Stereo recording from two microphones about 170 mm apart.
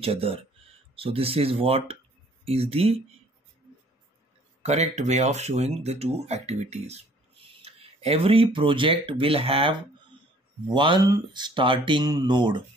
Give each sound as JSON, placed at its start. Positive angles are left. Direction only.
{"t": 0.0, "sound": "speech", "side_deg": -35}
{"t": 4.6, "sound": "speech", "side_deg": -40}